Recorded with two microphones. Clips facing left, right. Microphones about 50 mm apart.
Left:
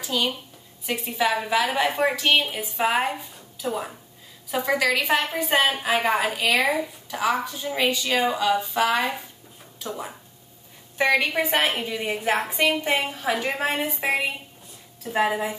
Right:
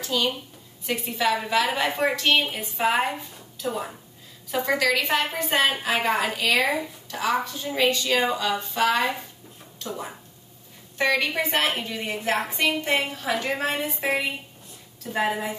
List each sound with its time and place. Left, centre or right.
0.0 s a woman's voice: centre